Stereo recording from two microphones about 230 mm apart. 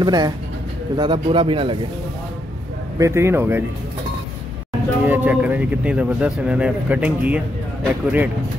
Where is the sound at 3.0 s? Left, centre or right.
Centre.